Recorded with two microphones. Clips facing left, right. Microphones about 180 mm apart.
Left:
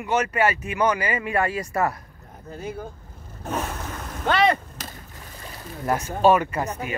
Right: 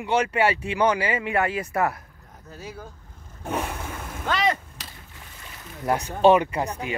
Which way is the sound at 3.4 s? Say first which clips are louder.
Even; 15° right (ahead or behind).